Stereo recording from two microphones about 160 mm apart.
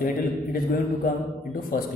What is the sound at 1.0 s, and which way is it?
Speech, 60° left (ahead or behind).